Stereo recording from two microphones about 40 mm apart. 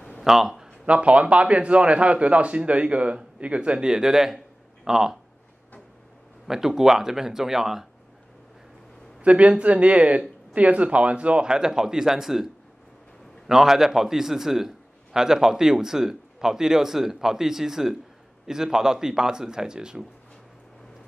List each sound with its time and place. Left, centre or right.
0.2 s speech: centre
0.7 s a man's voice: right
3.8 s a man's voice: centre
6.4 s a man's voice: centre
9.2 s speech: right; by 12.4 s centre
13.5 s a man's voice: centre